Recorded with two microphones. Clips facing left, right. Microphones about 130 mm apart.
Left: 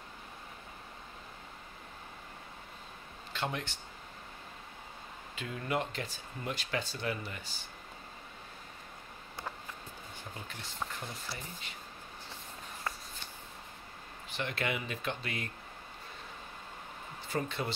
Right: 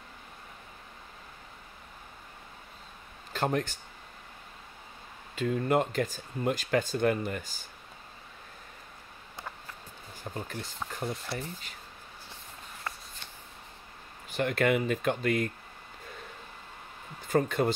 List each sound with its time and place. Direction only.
3.3 s speech: 45° right (ahead or behind)
5.3 s speech: 45° right (ahead or behind)
10.3 s speech: 40° right (ahead or behind)
10.8 s speech: centre (ahead or behind)
11.2 s speech: 45° right (ahead or behind)
14.3 s speech: 50° right (ahead or behind)
17.3 s speech: 45° right (ahead or behind)